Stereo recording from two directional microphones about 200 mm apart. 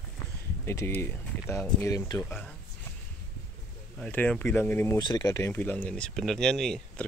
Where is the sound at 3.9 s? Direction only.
5° left (ahead or behind).